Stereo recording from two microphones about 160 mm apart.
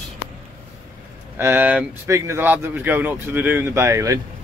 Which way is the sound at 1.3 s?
15° right (ahead or behind).